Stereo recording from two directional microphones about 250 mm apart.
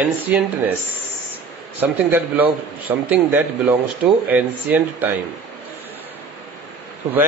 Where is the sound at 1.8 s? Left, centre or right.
Centre.